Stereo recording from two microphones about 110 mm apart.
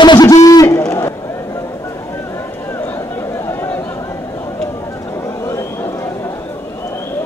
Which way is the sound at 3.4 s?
20° left (ahead or behind).